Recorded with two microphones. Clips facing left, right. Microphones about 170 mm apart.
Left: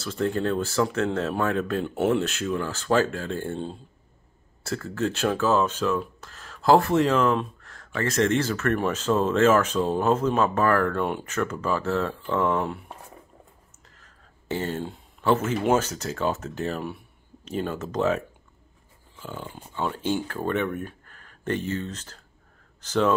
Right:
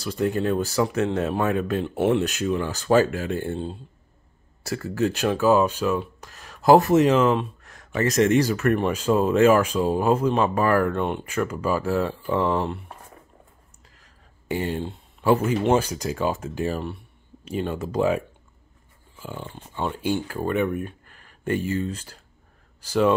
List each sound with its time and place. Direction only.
0.0 s speech: 15° right (ahead or behind)
1.7 s speech: centre (ahead or behind)
2.2 s speech: 15° right (ahead or behind)
4.6 s speech: 15° right (ahead or behind)
7.2 s speech: centre (ahead or behind)
7.6 s speech: 20° right (ahead or behind)
14.5 s speech: 15° right (ahead or behind)
19.1 s dog: 10° right (ahead or behind)
19.7 s speech: 10° right (ahead or behind)